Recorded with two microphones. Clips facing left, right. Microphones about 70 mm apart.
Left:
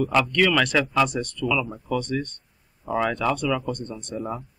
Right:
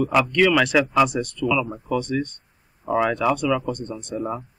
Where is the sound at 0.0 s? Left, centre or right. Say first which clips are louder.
Right 2 dB; centre.